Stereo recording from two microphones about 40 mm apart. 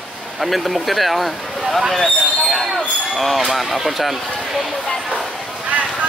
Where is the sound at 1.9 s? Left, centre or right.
Centre.